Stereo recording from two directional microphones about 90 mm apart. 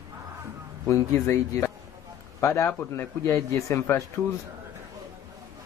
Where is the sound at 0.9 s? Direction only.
30° left (ahead or behind).